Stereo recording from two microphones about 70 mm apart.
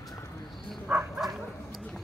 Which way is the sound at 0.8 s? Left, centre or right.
Right.